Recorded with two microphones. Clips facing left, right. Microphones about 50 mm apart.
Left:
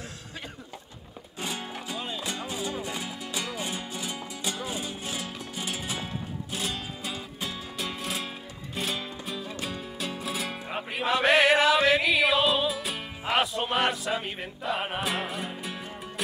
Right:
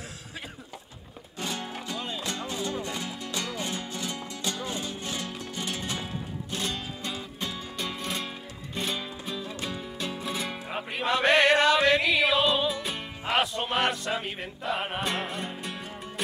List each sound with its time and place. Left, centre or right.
1.4 s music: centre